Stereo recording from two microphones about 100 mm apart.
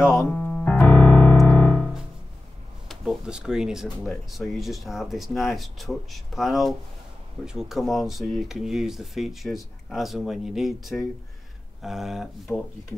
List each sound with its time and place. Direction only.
0.0 s speech: 30° left (ahead or behind)
0.3 s keyboard: 15° left (ahead or behind)
1.5 s piano: 15° left (ahead or behind)
2.9 s speech: 5° right (ahead or behind)